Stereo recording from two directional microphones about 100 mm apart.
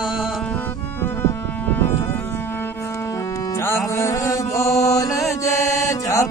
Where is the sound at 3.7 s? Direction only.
30° left (ahead or behind).